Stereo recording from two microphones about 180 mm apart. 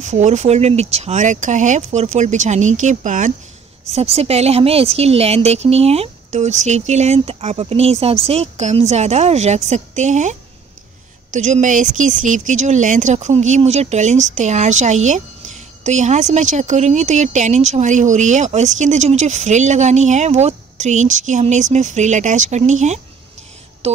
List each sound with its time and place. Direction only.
0.0 s speech: 40° right (ahead or behind)
11.3 s speech: 40° right (ahead or behind)